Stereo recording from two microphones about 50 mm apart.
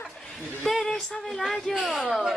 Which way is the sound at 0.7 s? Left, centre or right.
Centre.